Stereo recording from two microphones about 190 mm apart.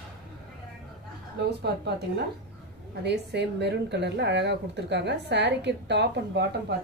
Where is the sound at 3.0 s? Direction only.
60° right (ahead or behind).